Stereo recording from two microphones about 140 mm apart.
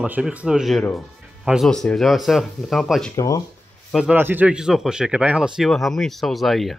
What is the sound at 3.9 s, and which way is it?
Speech, 5° right (ahead or behind).